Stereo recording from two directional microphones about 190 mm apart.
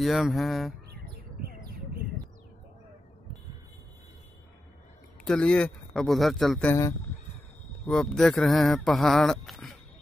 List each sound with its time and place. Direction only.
0.0 s speech: centre (ahead or behind)
5.2 s speech: 5° left (ahead or behind)
6.7 s speech: 15° left (ahead or behind)
7.8 s speech: 5° left (ahead or behind)